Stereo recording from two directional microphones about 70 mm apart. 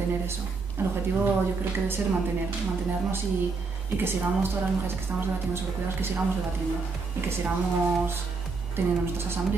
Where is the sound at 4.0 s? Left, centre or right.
Right.